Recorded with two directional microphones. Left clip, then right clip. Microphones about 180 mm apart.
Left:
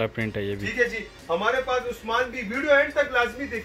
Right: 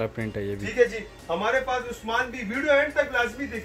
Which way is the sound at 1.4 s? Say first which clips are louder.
Even; 35° right (ahead or behind).